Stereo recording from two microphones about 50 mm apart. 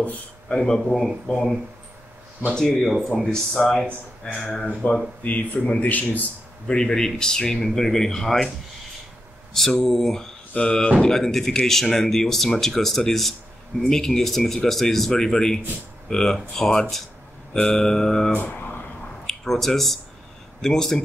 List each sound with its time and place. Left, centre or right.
0.5 s speech: centre
2.5 s speech: centre
2.9 s speech: centre
3.3 s speech: centre
4.8 s speech: left
6.7 s speech: centre
9.5 s speech: centre
10.5 s speech: left
18.3 s a sound: left
19.2 s speech: centre